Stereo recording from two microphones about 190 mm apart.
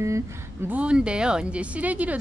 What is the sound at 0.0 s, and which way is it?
A woman's voice, 15° right (ahead or behind).